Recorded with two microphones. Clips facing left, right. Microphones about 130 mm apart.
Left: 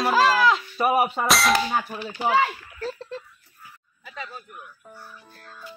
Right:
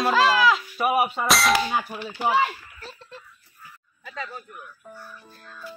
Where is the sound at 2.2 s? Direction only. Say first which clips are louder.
Left 1 dB; 5° right (ahead or behind).